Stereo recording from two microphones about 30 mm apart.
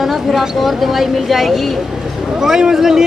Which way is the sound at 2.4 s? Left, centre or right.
Right.